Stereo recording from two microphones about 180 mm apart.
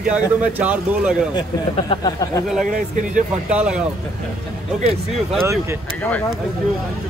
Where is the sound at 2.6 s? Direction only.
45° right (ahead or behind).